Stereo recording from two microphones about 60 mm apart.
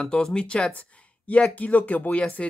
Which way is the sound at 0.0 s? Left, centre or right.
Centre.